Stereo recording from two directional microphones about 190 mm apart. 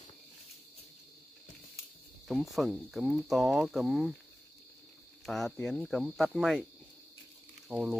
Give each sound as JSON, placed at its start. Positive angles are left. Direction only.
{"t": 2.2, "sound": "speech", "side_deg": 0}
{"t": 5.2, "sound": "speech", "side_deg": 0}
{"t": 7.6, "sound": "speech", "side_deg": -5}